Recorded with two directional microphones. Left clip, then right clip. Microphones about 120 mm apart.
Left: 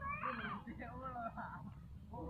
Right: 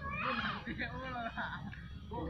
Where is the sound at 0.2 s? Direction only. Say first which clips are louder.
Right 7 dB; 10° left (ahead or behind).